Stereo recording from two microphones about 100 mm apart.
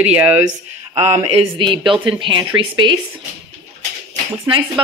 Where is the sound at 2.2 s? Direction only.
50° right (ahead or behind).